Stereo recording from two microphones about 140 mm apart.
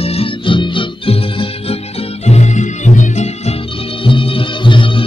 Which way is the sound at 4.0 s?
40° left (ahead or behind).